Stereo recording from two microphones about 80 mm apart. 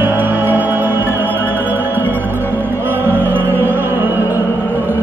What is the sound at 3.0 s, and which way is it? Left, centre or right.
Music, right.